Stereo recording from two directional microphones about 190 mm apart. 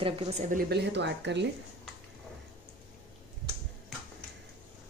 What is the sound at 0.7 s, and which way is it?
Speech, 65° right (ahead or behind).